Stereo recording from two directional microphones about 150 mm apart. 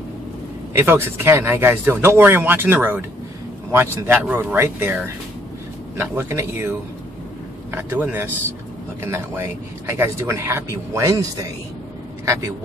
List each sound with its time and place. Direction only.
0.7 s speech: 15° right (ahead or behind)
5.9 s speech: 15° right (ahead or behind)
7.7 s speech: 10° right (ahead or behind)
12.3 s speech: 20° right (ahead or behind)